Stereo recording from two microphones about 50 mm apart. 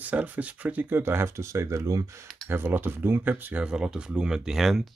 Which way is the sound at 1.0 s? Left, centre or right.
Right.